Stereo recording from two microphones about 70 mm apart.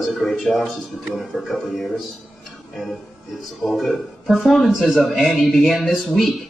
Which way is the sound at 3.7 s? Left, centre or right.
Centre.